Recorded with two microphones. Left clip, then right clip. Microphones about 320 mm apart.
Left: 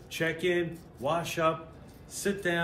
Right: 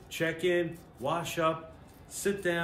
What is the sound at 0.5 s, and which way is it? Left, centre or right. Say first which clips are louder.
Speech: even; centre.